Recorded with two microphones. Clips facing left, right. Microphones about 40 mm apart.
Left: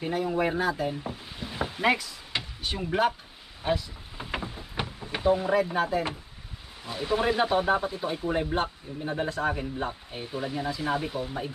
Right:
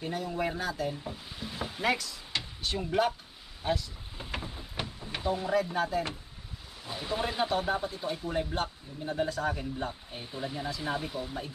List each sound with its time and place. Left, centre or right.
0.0 s speech: left
3.6 s a sound: centre
6.9 s speech: centre